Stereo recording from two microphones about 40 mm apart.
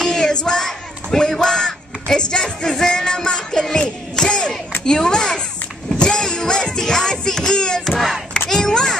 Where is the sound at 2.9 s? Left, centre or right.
Centre.